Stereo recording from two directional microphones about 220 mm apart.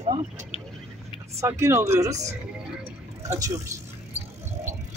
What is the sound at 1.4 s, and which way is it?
Speech, 10° right (ahead or behind).